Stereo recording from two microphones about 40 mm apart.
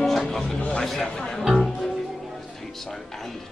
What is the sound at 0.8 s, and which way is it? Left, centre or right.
Speech, centre.